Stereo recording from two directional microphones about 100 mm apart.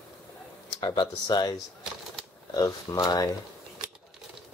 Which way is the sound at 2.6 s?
40° left (ahead or behind).